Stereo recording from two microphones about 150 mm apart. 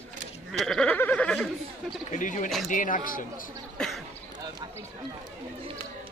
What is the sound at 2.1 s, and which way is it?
Speech, 55° left (ahead or behind).